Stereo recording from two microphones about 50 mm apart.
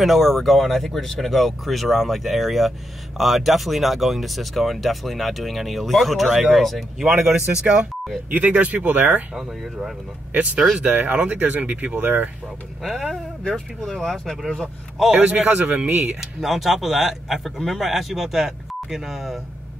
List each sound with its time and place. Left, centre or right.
0.0 s speech: centre
7.0 s speech: centre
7.6 s a man's voice: right
9.4 s speech: centre
10.3 s a man's voice: right
13.5 s speech: centre
15.1 s a man's voice: right
15.9 s speech: right
16.2 s speech: centre